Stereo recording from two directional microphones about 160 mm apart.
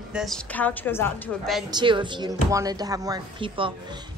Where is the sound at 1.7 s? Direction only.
30° right (ahead or behind).